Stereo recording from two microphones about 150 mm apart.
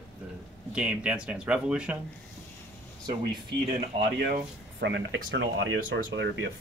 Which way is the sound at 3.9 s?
40° right (ahead or behind).